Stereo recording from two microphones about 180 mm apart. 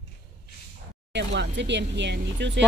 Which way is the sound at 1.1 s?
75° right (ahead or behind).